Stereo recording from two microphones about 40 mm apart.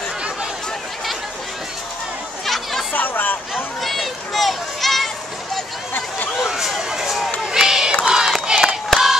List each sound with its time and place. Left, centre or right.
2.4 s chatter: centre
2.9 s chatter: left
3.8 s a sound: centre
6.3 s a sound: centre
7.5 s crowd: centre
8.0 s battle cry: centre